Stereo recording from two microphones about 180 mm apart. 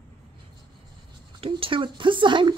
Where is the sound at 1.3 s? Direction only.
30° right (ahead or behind).